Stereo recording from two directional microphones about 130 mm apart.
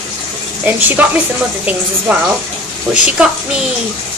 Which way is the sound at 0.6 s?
10° right (ahead or behind).